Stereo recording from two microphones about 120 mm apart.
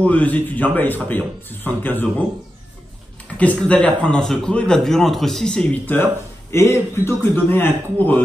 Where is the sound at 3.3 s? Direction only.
10° left (ahead or behind).